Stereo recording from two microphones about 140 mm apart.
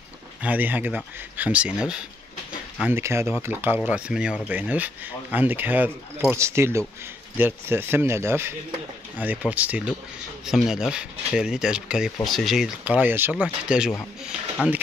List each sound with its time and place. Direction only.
0.4 s speech: 10° right (ahead or behind)